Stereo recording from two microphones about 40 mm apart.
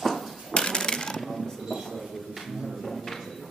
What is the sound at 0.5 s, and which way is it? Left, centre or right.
Coin, centre.